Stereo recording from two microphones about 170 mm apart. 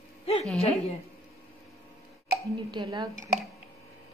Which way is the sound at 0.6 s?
35° left (ahead or behind).